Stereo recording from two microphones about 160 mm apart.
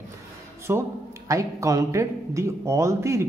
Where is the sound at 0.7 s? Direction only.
15° right (ahead or behind).